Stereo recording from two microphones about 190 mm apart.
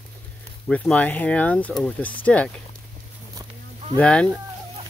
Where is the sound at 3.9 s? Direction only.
5° left (ahead or behind).